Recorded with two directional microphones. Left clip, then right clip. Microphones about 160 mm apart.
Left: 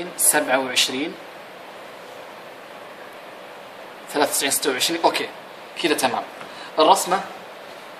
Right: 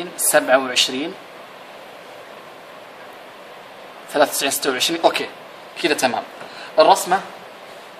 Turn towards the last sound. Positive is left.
turn(degrees=-35)  # may be behind; listen again after turning